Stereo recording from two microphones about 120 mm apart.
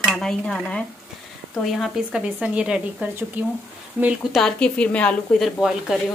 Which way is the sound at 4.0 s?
10° right (ahead or behind).